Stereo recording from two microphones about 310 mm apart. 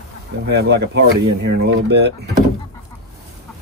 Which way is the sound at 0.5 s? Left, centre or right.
Right.